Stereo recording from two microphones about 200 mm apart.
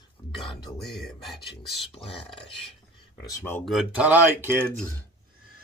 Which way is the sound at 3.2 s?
15° left (ahead or behind).